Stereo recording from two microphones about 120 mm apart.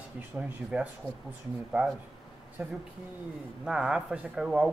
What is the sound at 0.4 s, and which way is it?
Speech, 10° right (ahead or behind).